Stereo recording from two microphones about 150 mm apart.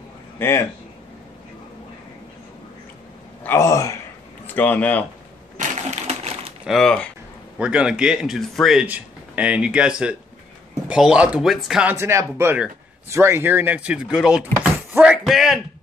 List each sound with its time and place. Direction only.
0.4 s speech: 15° left (ahead or behind)
3.4 s speech: 20° left (ahead or behind)
5.6 s crushing: 50° right (ahead or behind)
6.6 s speech: centre (ahead or behind)
8.8 s speech: 10° right (ahead or behind)
11.9 s speech: 20° right (ahead or behind); by 15.6 s centre (ahead or behind)